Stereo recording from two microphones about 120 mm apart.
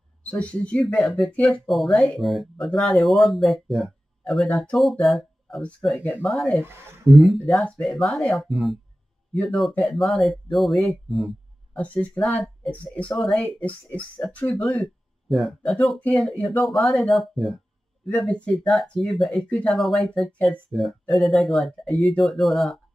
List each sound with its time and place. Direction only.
0.2 s speech: 10° left (ahead or behind)
6.6 s speech: 20° right (ahead or behind)
7.2 s speech: centre (ahead or behind)
11.8 s speech: 10° left (ahead or behind)
14.8 s speech: centre (ahead or behind)
20.7 s speech: centre (ahead or behind)